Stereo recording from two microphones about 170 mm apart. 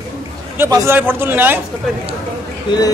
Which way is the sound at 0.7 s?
10° right (ahead or behind).